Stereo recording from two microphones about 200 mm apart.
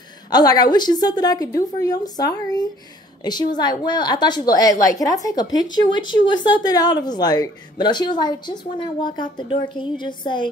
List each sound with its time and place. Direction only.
0.3 s speech: 20° left (ahead or behind)